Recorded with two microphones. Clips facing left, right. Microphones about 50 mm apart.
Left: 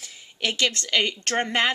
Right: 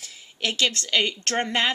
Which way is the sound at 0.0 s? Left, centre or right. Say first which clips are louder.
Left 1 dB; centre.